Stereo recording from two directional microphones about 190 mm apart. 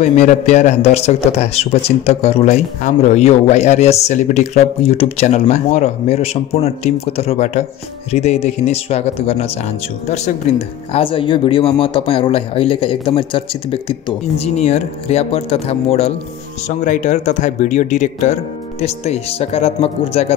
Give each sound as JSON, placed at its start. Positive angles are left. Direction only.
{"t": 0.0, "sound": "a man's voice", "side_deg": 40}